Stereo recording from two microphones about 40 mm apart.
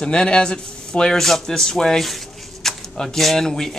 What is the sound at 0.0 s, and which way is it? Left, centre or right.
Speech, left.